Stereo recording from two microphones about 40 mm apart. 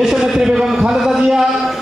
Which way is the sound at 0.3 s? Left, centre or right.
Centre.